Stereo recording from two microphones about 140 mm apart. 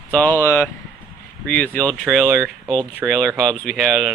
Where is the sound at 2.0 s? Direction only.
5° right (ahead or behind).